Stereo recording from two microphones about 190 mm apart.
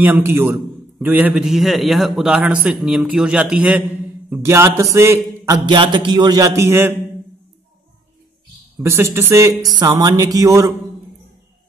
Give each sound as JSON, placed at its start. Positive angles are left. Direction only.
{"t": 0.0, "sound": "a man's voice", "side_deg": -10}
{"t": 5.7, "sound": "a man's voice", "side_deg": -25}
{"t": 8.7, "sound": "a man's voice", "side_deg": -15}